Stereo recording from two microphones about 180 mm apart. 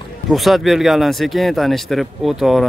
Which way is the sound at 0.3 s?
Centre (ahead or behind).